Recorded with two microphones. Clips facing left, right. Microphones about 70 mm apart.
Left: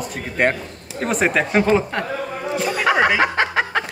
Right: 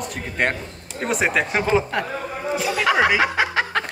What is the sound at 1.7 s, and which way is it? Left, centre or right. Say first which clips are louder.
Speech: left 2 dB; centre.